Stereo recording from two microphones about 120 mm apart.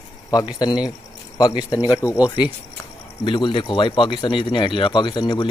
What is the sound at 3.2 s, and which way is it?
A man's voice, 45° left (ahead or behind).